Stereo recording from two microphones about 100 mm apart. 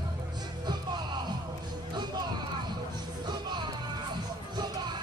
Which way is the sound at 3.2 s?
45° right (ahead or behind).